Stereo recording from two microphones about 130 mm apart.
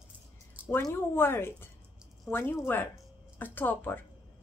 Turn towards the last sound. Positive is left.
turn(degrees=15)  # may be behind; listen again after turning